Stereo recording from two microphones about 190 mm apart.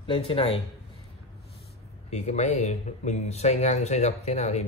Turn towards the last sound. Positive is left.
turn(degrees=35)  # may be behind; listen again after turning